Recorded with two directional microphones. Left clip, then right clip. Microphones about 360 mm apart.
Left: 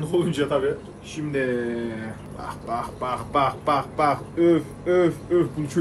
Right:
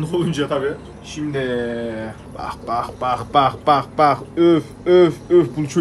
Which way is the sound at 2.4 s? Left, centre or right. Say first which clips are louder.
Right 6 dB; right.